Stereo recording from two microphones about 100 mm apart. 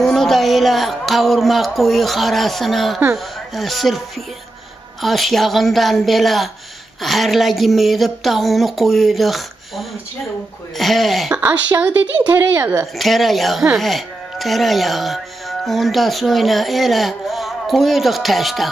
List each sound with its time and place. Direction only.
0.0 s speech: 5° left (ahead or behind)
5.0 s speech: centre (ahead or behind)
11.3 s speech: 15° right (ahead or behind)
12.9 s speech: centre (ahead or behind)